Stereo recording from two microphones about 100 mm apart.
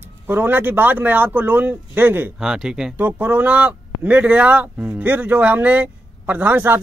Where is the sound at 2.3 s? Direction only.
5° right (ahead or behind).